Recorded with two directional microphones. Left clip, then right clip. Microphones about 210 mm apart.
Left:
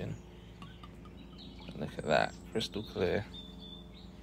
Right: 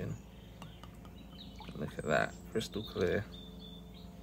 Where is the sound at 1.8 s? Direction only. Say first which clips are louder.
Left 2 dB; 15° right (ahead or behind).